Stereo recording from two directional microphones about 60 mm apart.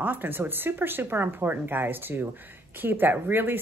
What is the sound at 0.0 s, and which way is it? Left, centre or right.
Speech, right.